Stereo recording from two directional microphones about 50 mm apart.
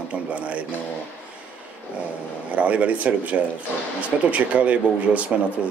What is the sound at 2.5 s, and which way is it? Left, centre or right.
Speech, right.